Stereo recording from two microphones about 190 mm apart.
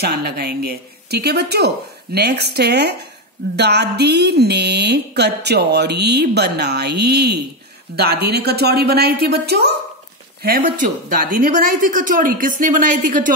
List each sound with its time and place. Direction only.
0.0 s a woman's voice: 55° right (ahead or behind)
10.4 s a woman's voice: 50° right (ahead or behind)